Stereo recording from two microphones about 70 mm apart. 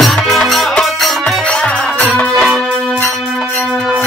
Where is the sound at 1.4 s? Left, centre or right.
Centre.